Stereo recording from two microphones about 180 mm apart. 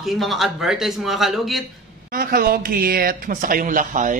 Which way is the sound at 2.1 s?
55° right (ahead or behind).